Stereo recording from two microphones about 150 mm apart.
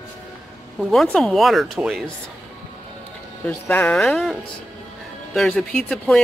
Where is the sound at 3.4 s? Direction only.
10° left (ahead or behind).